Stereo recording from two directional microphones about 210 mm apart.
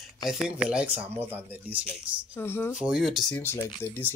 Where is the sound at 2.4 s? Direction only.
10° left (ahead or behind).